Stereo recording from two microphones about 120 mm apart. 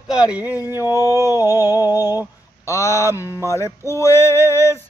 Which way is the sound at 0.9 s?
20° right (ahead or behind).